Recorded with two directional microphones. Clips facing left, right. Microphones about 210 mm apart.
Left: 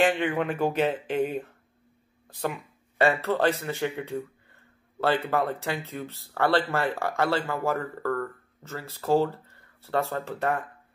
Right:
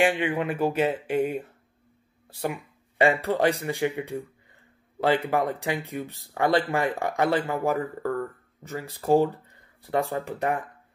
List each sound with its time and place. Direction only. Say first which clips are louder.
0.0 s speech: even; 10° right (ahead or behind)